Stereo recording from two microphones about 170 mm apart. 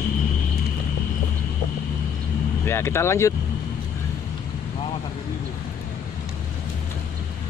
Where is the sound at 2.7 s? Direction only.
15° left (ahead or behind).